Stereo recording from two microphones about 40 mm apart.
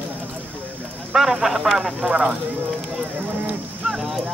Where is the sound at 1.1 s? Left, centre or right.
Centre.